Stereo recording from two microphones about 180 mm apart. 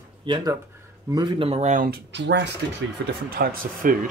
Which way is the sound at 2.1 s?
75° right (ahead or behind).